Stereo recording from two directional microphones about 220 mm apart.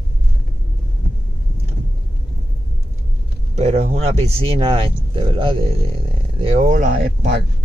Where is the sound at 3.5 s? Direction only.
30° right (ahead or behind).